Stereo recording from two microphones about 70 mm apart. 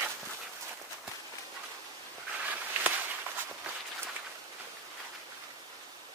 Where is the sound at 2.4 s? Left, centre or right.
Right.